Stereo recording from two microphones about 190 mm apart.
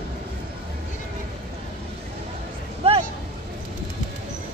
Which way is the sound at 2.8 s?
30° right (ahead or behind).